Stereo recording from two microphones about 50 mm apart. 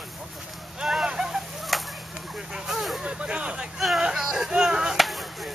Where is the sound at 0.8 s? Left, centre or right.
Centre.